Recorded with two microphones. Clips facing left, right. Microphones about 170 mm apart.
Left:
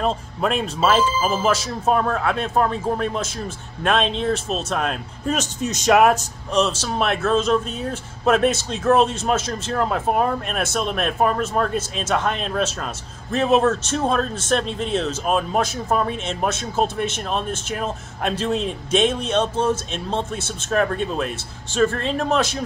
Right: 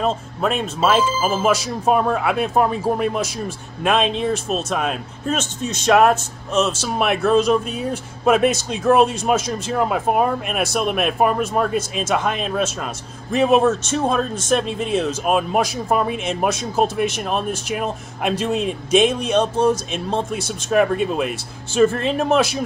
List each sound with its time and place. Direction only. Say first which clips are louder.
0.0 s speech: right 1 dB; centre (ahead or behind)
3.8 s speech: right 2 dB; 5° right (ahead or behind)
7.0 s speech: right 4 dB; 10° right (ahead or behind)
16.8 s speech: right 3 dB; 25° left (ahead or behind)
17.7 s speech: right 2 dB; 10° right (ahead or behind)